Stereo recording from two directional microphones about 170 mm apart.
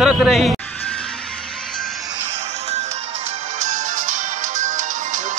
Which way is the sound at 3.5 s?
45° right (ahead or behind).